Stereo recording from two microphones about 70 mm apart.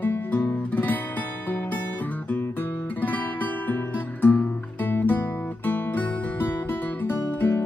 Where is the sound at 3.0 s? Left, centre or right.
Left.